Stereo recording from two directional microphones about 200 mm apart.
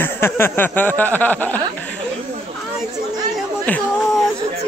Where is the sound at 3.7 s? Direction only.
5° left (ahead or behind).